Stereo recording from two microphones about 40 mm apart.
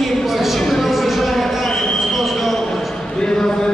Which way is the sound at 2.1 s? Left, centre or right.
Centre.